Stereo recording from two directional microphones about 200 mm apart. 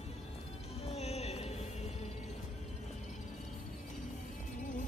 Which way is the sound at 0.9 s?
30° left (ahead or behind).